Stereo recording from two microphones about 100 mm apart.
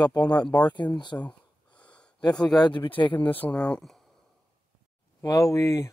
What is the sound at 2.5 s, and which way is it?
Speech, 50° left (ahead or behind).